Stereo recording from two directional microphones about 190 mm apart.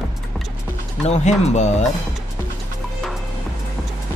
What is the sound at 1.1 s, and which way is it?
Speech, 35° left (ahead or behind).